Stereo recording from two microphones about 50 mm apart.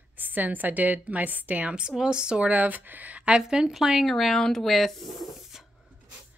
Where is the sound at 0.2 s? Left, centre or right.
Right.